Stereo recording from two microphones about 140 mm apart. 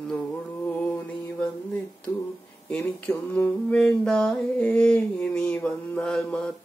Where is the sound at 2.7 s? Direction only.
10° left (ahead or behind).